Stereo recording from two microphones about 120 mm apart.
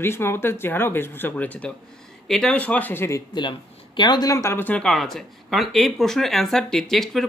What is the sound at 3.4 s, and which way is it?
Speech, 40° left (ahead or behind).